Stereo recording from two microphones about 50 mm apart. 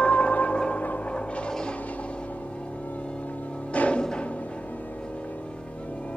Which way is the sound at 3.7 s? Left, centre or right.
Left.